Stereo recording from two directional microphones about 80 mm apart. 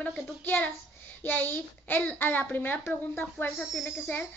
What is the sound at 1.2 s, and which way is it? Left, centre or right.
A child's voice, left.